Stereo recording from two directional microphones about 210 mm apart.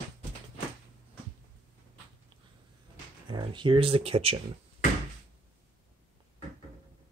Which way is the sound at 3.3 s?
20° right (ahead or behind).